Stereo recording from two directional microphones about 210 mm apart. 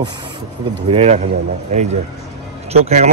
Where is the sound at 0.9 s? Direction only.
30° right (ahead or behind).